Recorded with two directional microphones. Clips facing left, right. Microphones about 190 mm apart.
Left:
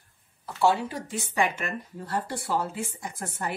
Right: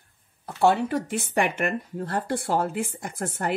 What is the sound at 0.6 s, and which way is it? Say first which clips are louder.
Speech: right 3 dB; 60° right (ahead or behind).